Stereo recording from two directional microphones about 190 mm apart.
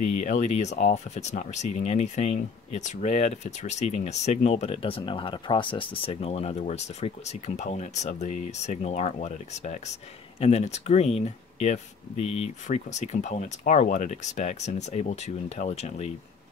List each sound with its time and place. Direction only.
0.0 s speech: 40° left (ahead or behind)